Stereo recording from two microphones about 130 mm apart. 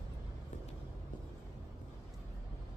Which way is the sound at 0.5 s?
80° left.